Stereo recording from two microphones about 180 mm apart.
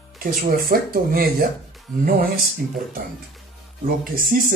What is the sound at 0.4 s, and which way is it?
Speech, 55° right (ahead or behind).